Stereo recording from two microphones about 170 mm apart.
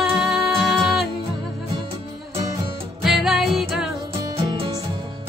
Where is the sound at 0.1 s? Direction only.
Centre (ahead or behind).